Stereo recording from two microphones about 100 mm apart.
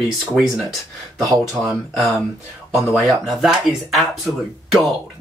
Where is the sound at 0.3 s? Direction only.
5° right (ahead or behind).